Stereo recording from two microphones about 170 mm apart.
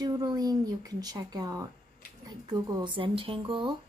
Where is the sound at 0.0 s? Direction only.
25° right (ahead or behind).